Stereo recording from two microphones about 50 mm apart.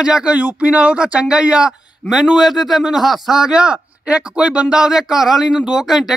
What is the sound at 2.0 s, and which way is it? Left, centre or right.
Speech, left.